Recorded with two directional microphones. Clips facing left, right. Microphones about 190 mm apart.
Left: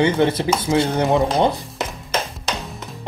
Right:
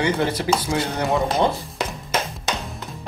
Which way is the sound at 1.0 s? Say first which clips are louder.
Left 4 dB; centre (ahead or behind).